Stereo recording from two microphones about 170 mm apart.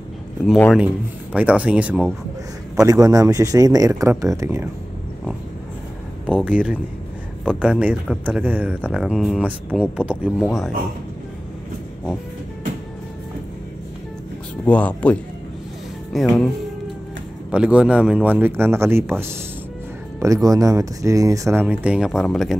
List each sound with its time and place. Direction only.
1.3 s speech: 10° right (ahead or behind)
2.7 s a man's voice: 20° right (ahead or behind)
6.4 s speech: 5° right (ahead or behind)
14.6 s speech: 10° left (ahead or behind)
17.5 s speech: 5° right (ahead or behind)